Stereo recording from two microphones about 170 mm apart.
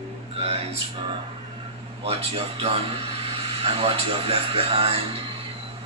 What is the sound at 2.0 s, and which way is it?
Speech, 35° right (ahead or behind).